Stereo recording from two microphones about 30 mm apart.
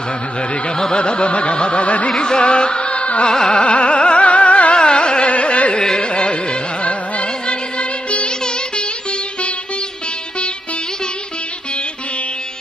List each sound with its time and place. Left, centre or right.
0.9 s a sound: left
2.0 s music: left
3.3 s carnatic music: left
3.6 s music: left
4.7 s carnatic music: left
5.3 s carnatic music: left
5.9 s music: left
8.3 s music: left